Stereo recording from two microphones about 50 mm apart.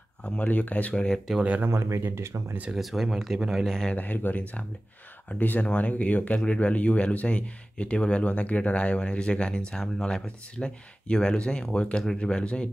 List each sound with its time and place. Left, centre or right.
0.2 s speech: left
1.3 s speech: centre
1.7 s speech: right
2.7 s speech: centre
3.6 s speech: centre
3.9 s speech: left; by 12.6 s centre